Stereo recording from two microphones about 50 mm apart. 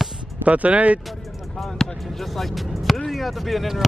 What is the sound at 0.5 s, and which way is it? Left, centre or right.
Speech, right.